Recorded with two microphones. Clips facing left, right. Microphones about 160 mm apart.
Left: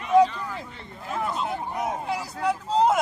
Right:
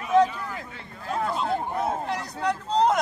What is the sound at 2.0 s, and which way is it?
Speech, 5° left (ahead or behind).